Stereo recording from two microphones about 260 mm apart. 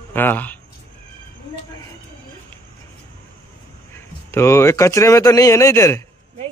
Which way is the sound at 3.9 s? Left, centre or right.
Centre.